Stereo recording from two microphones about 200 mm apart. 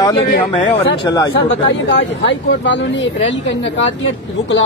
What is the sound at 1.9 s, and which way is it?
Speech, 65° left (ahead or behind).